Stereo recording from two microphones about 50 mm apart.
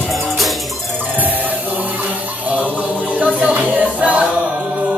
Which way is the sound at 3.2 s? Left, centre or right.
Right.